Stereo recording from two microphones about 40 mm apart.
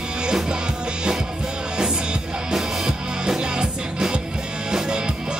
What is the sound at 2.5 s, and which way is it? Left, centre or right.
Music, centre.